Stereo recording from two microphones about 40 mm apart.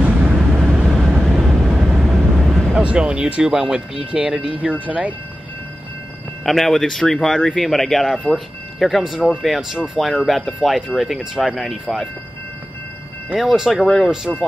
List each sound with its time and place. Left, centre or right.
0.0 s vehicle: right
0.8 s vehicle: centre
2.8 s speech: right
3.4 s speech: centre
4.0 s speech: right
4.6 s speech: right
6.4 s speech: centre
9.9 s speech: centre
13.4 s speech: centre
13.8 s speech: centre